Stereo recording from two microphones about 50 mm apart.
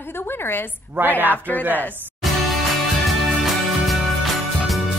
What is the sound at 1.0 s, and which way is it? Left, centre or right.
Speech, right.